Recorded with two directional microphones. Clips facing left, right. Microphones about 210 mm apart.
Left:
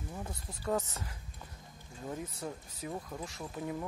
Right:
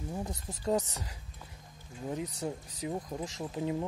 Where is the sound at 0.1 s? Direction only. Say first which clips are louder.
Right 6 dB; 20° right (ahead or behind).